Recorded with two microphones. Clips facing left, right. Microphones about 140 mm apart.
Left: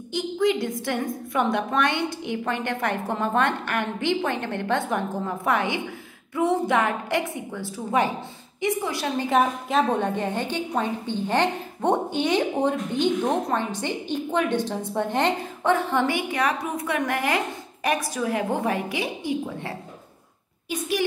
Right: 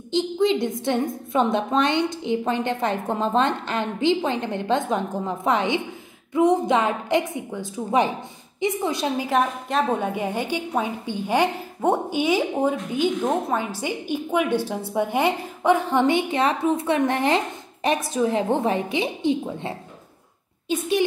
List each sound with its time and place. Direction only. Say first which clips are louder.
0.1 s a woman's voice: right 2 dB; 25° right (ahead or behind)
9.1 s a woman's voice: even; 10° right (ahead or behind)